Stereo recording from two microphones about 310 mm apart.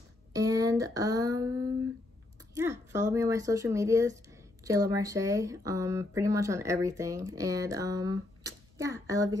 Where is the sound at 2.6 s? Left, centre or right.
Centre.